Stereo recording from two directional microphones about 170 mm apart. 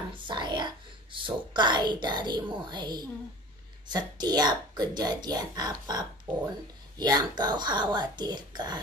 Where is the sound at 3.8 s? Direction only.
25° right (ahead or behind).